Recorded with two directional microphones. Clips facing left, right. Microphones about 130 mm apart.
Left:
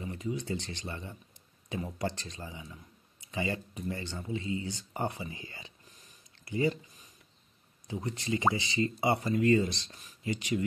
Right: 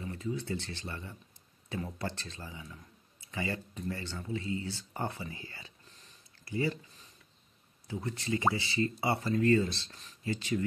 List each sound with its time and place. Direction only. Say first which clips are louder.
0.0 s speech: left 1 dB; 15° left (ahead or behind)